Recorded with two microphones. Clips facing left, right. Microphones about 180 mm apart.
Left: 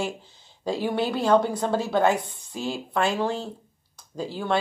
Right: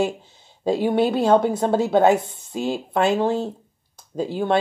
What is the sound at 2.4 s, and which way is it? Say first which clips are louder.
Speech: right 6 dB; 20° right (ahead or behind).